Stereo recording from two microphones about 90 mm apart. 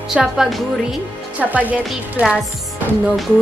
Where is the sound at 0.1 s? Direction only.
5° right (ahead or behind).